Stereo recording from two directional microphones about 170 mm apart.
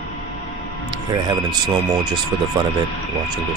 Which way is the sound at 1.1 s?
25° right (ahead or behind).